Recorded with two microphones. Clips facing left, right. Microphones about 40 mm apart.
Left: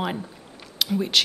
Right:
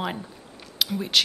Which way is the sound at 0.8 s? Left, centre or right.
Centre.